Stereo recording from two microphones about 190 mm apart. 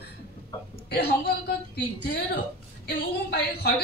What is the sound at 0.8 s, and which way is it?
A woman's voice, 60° left (ahead or behind).